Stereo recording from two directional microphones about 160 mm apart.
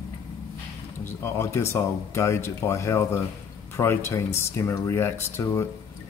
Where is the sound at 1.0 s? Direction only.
15° left (ahead or behind).